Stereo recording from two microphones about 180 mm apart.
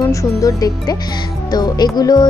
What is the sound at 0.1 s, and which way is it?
Speech, 20° left (ahead or behind).